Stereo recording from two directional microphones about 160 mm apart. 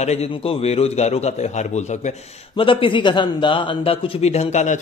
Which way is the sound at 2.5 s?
35° left (ahead or behind).